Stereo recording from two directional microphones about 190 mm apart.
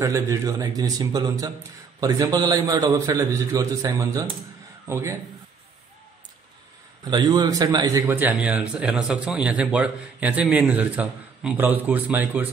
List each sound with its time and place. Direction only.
0.0 s a man's voice: 15° right (ahead or behind)
7.1 s a man's voice: 20° right (ahead or behind)
8.1 s speech: 10° right (ahead or behind)